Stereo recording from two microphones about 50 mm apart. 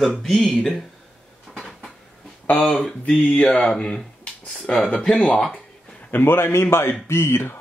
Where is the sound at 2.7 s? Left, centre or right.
Left.